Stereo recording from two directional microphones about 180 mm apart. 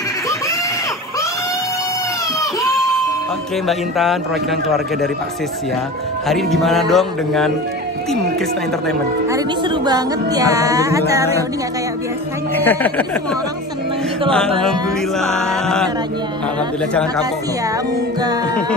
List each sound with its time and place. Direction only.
3.6 s music: centre (ahead or behind)
6.2 s music: centre (ahead or behind)
9.3 s speech: 25° right (ahead or behind)
12.5 s speech: 10° left (ahead or behind)
14.6 s music: 5° left (ahead or behind)